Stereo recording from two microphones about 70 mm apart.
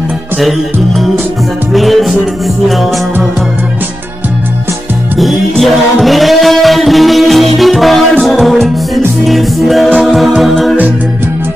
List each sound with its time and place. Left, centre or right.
0.4 s music: centre
5.2 s music: centre